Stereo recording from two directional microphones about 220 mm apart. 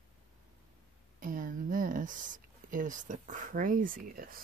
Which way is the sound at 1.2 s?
40° right (ahead or behind).